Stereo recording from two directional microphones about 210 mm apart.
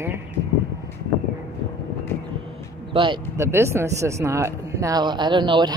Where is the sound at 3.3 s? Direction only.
15° right (ahead or behind).